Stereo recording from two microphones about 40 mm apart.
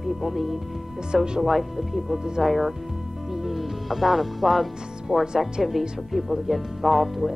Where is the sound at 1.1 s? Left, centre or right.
Centre.